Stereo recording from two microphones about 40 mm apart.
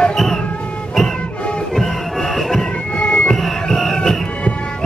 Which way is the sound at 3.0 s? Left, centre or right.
Left.